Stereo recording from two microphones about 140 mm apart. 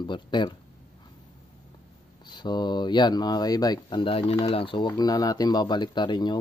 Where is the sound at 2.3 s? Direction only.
30° left (ahead or behind).